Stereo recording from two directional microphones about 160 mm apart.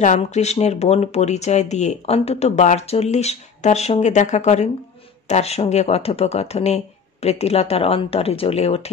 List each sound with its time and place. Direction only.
0.0 s speech: 50° left (ahead or behind)